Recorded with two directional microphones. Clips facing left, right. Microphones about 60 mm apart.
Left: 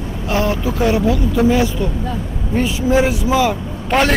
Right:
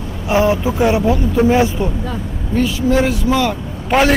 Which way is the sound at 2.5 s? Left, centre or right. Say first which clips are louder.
Even; centre.